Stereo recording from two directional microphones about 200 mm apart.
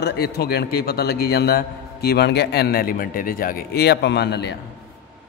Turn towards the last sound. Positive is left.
turn(degrees=55)  # may be behind; listen again after turning